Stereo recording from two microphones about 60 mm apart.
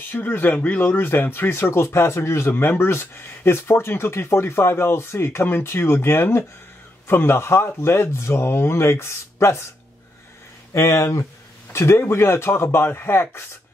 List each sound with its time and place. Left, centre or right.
0.1 s speech: left
10.7 s speech: left
11.7 s speech: left